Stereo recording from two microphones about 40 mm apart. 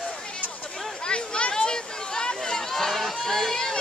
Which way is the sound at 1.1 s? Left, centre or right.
Left.